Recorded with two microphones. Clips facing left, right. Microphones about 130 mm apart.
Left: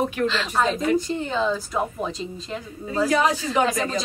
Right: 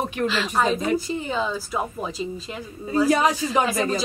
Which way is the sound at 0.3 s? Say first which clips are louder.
Right 1 dB; 5° right (ahead or behind).